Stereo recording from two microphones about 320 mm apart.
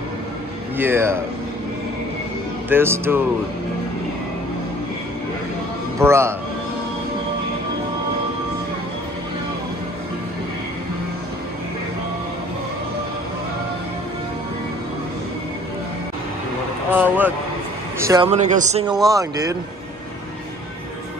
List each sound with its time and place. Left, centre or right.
0.7 s speech: centre
2.7 s speech: centre
5.9 s speech: centre
16.9 s speech: centre